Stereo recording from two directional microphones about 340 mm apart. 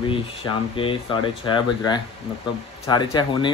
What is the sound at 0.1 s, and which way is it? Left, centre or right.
Speech, centre.